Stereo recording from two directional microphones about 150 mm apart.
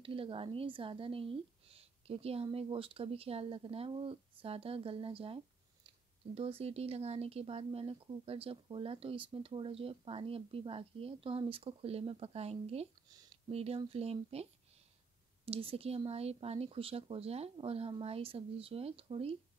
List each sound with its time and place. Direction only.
0.0 s speech: 35° right (ahead or behind)